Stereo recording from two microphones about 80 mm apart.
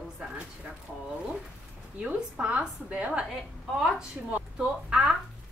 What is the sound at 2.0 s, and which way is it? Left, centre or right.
A woman's voice, centre.